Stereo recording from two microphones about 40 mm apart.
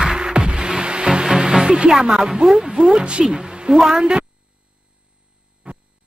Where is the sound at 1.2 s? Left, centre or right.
Centre.